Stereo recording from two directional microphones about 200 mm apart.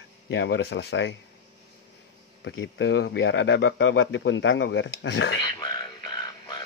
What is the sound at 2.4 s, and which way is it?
Speech, 70° left (ahead or behind).